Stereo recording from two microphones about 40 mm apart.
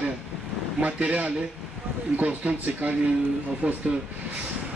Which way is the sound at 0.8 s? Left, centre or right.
Right.